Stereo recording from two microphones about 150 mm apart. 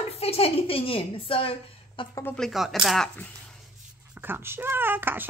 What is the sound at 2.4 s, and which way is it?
Speech, centre (ahead or behind).